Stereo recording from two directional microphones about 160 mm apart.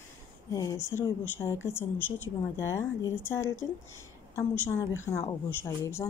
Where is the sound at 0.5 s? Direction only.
20° left (ahead or behind).